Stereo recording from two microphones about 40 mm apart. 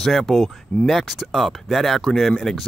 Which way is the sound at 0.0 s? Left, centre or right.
Centre.